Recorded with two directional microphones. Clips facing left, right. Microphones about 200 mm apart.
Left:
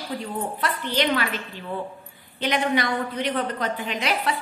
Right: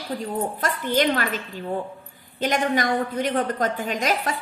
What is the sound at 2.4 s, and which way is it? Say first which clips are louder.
A woman's voice: right 1 dB; 45° right (ahead or behind).